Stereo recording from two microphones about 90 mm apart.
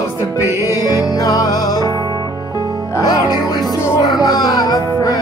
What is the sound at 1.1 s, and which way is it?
Music, 45° left (ahead or behind).